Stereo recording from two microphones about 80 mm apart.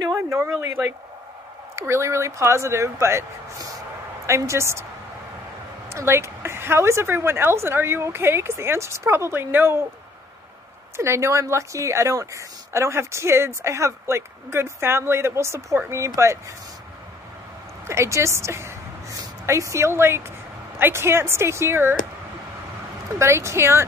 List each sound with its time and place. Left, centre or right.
0.0 s a woman's voice: right
4.3 s a woman's voice: right
5.9 s a woman's voice: right
11.0 s a woman's voice: right
17.8 s a woman's voice: right
23.1 s a woman's voice: right